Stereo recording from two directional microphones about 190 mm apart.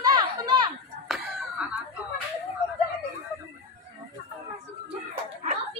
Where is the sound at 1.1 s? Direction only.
Centre (ahead or behind).